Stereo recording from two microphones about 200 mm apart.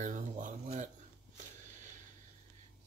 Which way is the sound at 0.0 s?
40° right (ahead or behind).